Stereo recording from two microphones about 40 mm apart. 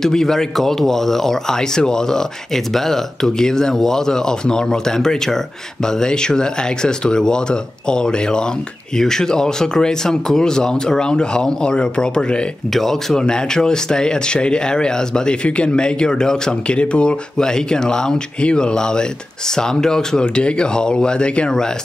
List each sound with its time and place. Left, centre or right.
0.0 s speech: centre
12.7 s speech: centre
13.2 s speech: centre